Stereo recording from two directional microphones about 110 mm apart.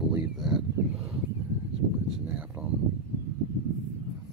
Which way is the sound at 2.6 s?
15° right (ahead or behind).